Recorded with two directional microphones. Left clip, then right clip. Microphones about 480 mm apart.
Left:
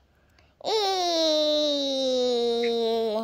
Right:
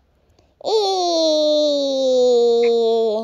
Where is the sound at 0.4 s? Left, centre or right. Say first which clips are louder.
Right 7 dB; centre.